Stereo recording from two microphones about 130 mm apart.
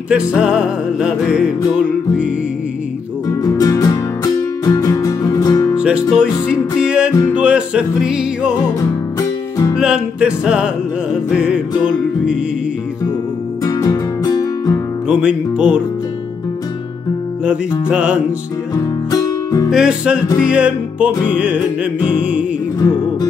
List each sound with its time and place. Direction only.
0.1 s music: 10° right (ahead or behind)
3.3 s music: 30° left (ahead or behind)
5.8 s music: 5° right (ahead or behind)
9.8 s music: 5° right (ahead or behind)
13.7 s music: 30° left (ahead or behind)
15.0 s music: 10° right (ahead or behind)
17.5 s music: 10° right (ahead or behind)
19.0 s music: 30° left (ahead or behind)
19.7 s music: 5° right (ahead or behind)